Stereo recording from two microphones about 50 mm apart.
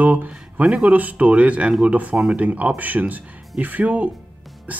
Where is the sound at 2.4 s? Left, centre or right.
Right.